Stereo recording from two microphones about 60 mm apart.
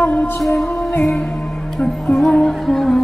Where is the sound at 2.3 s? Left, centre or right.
Centre.